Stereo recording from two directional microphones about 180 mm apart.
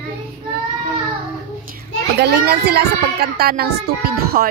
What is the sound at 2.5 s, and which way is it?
Speech, 60° right (ahead or behind).